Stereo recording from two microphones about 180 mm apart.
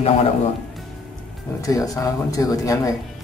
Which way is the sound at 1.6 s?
20° left (ahead or behind).